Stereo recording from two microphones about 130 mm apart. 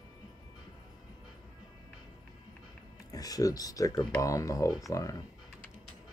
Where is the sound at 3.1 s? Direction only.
30° left (ahead or behind).